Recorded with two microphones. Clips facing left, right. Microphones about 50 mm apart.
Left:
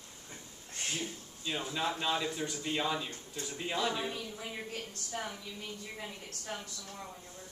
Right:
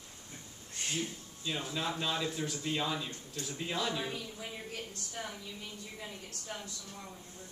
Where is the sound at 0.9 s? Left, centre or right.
Centre.